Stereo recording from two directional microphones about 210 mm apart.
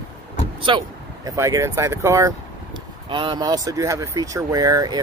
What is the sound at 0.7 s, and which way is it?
Speech, 20° right (ahead or behind).